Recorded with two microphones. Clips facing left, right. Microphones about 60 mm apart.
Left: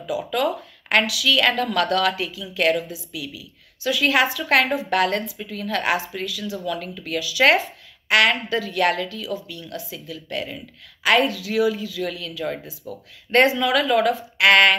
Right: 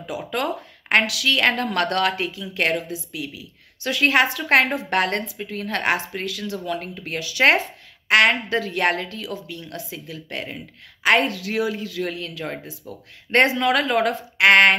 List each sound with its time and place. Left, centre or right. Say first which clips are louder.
0.0 s a woman's voice: left 3 dB; right
6.6 s a woman's voice: even; right